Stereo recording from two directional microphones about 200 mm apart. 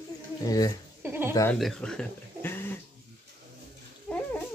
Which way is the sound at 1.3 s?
15° left (ahead or behind).